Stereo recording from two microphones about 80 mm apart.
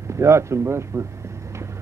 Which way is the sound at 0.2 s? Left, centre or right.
Right.